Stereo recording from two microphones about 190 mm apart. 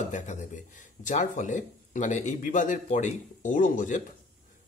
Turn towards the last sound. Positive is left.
turn(degrees=45)  # may be behind; listen again after turning